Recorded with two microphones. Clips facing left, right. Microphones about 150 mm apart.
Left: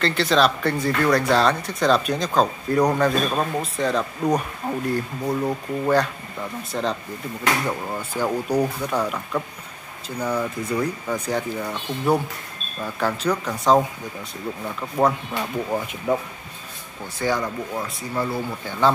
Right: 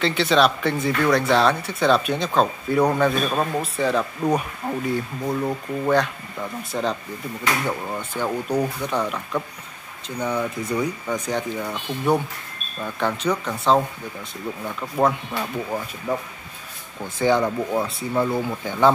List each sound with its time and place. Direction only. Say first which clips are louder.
0.0 s speech: right 1 dB; centre (ahead or behind)
11.7 s speech: even; 5° right (ahead or behind)
16.1 s speech: left 3 dB; 20° left (ahead or behind)
17.2 s speech: right 5 dB; 20° right (ahead or behind)